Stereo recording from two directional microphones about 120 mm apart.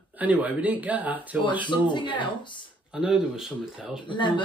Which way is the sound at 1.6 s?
40° left (ahead or behind).